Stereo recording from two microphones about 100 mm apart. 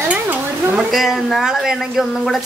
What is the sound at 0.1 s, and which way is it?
Stir, 20° right (ahead or behind).